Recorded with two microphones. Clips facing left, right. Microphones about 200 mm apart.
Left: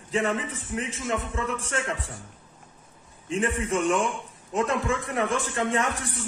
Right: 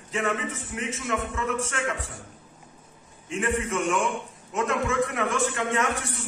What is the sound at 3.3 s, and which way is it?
A man's voice, 35° left (ahead or behind).